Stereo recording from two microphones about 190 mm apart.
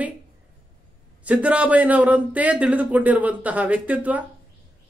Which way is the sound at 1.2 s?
5° right (ahead or behind).